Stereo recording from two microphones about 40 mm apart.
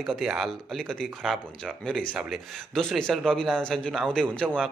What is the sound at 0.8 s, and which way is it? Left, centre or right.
Speech, centre.